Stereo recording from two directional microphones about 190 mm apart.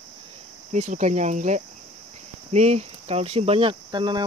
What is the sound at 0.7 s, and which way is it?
Speech, 40° right (ahead or behind).